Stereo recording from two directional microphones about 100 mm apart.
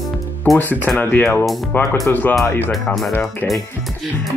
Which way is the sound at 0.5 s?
20° left (ahead or behind).